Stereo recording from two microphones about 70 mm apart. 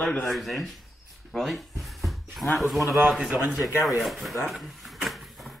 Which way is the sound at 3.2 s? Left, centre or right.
Centre.